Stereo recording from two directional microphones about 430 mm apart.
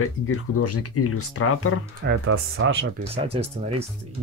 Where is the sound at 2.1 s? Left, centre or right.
Right.